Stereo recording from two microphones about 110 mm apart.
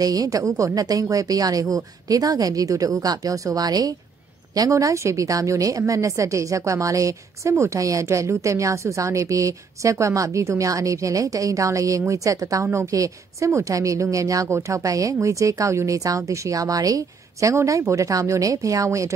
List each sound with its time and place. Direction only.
0.0 s a woman's voice: 35° right (ahead or behind)